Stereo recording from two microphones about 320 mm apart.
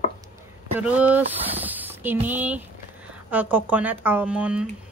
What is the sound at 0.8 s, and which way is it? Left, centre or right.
Speech, centre.